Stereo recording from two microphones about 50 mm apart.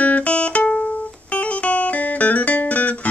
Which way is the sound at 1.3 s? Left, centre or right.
Left.